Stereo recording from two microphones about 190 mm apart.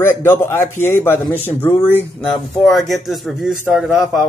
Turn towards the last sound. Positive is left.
turn(degrees=0)  # may be behind; listen again after turning